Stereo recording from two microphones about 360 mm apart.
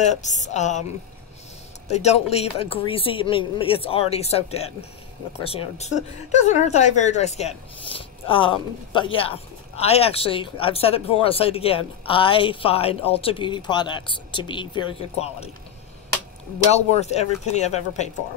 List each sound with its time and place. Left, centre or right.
0.0 s a woman's voice: centre
1.9 s a woman's voice: centre
17.0 s a woman's voice: centre